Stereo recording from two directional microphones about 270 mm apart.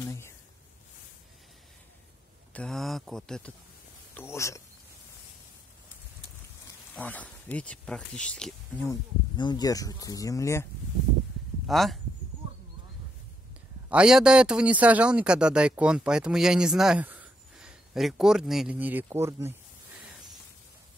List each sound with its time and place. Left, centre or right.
0.0 s a sound: centre
2.5 s a man's voice: centre
7.0 s a man's voice: centre
9.4 s speech: centre
13.8 s a man's voice: centre